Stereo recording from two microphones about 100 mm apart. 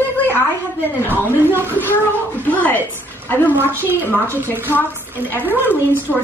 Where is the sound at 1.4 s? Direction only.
20° right (ahead or behind).